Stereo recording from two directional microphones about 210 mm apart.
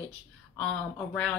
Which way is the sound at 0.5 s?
5° left (ahead or behind).